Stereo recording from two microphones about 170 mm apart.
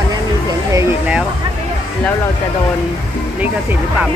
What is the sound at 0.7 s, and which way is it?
Speech, 10° right (ahead or behind).